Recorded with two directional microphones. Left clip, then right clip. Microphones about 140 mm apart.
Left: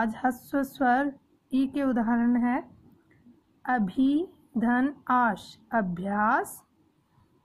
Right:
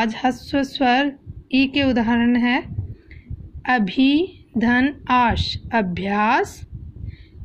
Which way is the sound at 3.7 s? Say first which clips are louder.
Right 8 dB; 35° right (ahead or behind).